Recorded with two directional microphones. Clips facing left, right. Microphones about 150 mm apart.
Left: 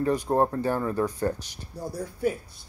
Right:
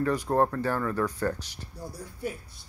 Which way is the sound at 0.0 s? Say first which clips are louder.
Left 1 dB; 20° left (ahead or behind).